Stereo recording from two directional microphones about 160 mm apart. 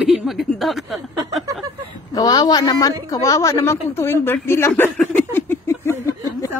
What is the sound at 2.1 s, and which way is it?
Speech, 25° left (ahead or behind).